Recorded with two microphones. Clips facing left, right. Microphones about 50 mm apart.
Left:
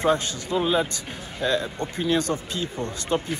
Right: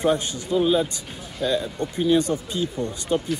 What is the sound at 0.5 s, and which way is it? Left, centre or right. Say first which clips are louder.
Speech: right 3 dB; left.